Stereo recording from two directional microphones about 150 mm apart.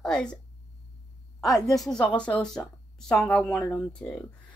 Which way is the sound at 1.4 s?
Centre (ahead or behind).